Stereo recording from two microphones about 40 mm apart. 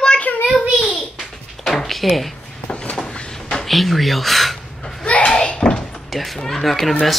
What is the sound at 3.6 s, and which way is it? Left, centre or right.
Speech, centre.